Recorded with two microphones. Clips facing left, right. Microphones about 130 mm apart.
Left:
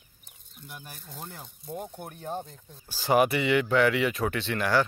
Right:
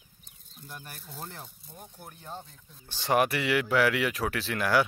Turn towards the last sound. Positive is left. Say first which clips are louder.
# left 1 dB
turn(degrees=-5)  # may be behind; listen again after turning